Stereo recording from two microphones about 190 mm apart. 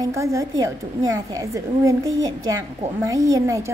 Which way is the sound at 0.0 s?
15° right (ahead or behind).